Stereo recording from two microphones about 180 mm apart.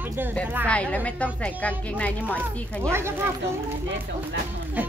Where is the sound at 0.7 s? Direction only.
5° left (ahead or behind).